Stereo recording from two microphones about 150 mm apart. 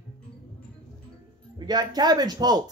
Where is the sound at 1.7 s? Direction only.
25° right (ahead or behind).